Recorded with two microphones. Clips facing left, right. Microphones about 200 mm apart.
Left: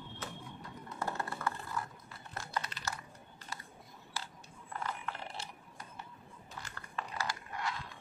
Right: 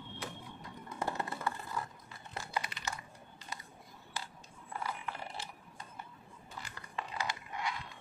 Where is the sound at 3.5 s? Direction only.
20° right (ahead or behind).